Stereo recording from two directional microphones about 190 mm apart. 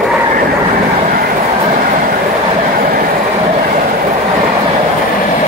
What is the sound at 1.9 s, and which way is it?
Train, 45° right (ahead or behind).